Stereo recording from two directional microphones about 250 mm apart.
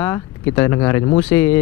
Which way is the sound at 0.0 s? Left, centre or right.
Centre.